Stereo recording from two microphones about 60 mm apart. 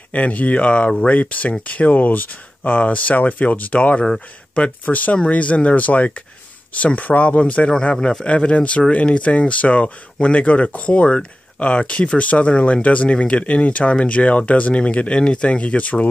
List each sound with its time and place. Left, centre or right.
0.1 s speech: left